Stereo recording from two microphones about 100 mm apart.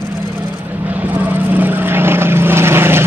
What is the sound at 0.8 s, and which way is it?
Vehicle, 15° right (ahead or behind).